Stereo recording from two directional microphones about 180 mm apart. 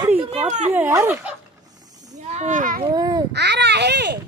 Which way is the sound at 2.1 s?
40° right (ahead or behind).